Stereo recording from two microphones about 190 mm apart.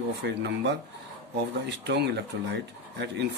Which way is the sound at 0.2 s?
65° right (ahead or behind).